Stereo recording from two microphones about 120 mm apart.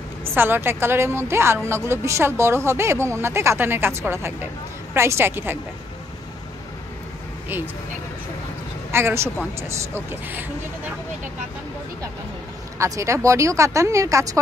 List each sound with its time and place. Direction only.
0.2 s speech: 20° right (ahead or behind)
8.9 s speech: 20° right (ahead or behind)
12.7 s speech: 25° right (ahead or behind)